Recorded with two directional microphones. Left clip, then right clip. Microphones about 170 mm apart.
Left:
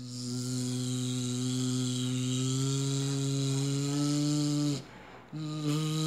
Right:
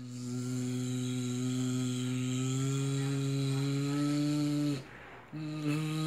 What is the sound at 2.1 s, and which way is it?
Chainsaw, 5° left (ahead or behind).